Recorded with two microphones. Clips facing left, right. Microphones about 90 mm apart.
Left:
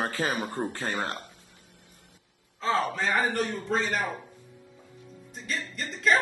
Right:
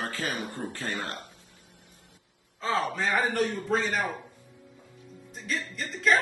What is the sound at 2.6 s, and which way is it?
Speech, centre (ahead or behind).